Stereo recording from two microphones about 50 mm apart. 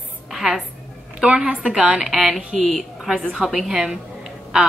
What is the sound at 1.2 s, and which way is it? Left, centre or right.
Speech, centre.